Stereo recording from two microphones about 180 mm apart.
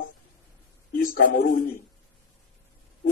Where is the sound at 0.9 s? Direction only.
50° left (ahead or behind).